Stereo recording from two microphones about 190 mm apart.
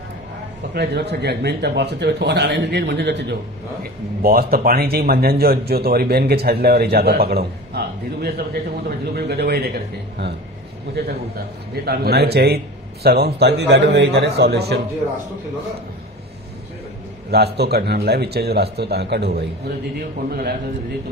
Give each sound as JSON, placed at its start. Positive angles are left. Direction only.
{"t": 0.7, "sound": "speech", "side_deg": -60}
{"t": 3.8, "sound": "speech", "side_deg": -55}
{"t": 17.3, "sound": "speech", "side_deg": -60}